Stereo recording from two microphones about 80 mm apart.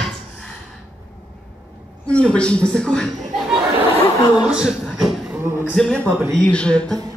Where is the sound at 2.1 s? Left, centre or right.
Centre.